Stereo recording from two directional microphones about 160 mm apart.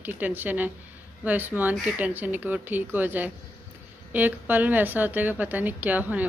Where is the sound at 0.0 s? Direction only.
10° right (ahead or behind).